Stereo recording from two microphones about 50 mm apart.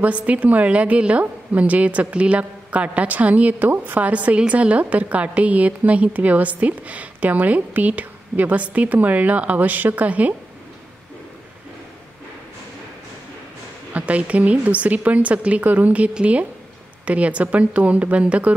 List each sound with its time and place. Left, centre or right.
0.0 s a woman's voice: right
13.9 s a woman's voice: right